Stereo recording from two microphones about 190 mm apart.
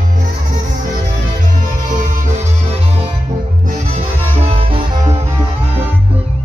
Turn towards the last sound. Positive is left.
turn(degrees=-30)  # may be behind; listen again after turning